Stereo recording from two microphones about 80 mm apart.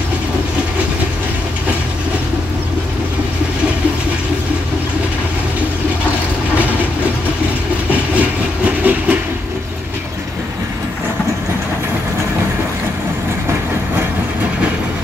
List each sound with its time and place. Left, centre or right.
7.9 s train: centre